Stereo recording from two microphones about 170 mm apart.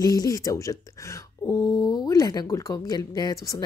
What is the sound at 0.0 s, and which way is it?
Speech, 20° left (ahead or behind).